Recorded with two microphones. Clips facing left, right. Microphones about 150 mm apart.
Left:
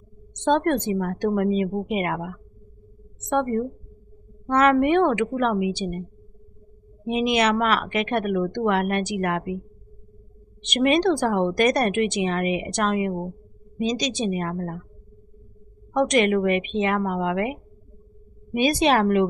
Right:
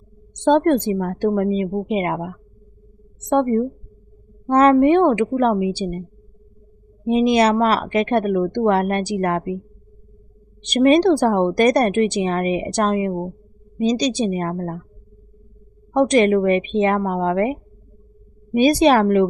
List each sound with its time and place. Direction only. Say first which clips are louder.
0.5 s a woman's voice: right 5 dB; 35° right (ahead or behind)
1.7 s speech: right 4 dB; 15° right (ahead or behind)
2.0 s a woman's voice: right 4 dB; 30° right (ahead or behind)
7.1 s speech: right 6 dB; 35° right (ahead or behind)
10.7 s speech: right 6 dB; 35° right (ahead or behind)
15.9 s speech: right 5 dB; 35° right (ahead or behind)